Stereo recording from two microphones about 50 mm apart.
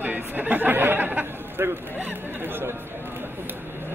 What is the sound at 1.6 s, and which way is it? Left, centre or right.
Speech, right.